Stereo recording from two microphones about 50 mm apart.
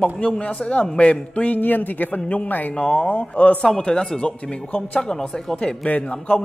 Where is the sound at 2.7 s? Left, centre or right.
Centre.